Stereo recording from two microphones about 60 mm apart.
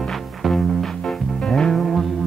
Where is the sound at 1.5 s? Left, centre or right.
Centre.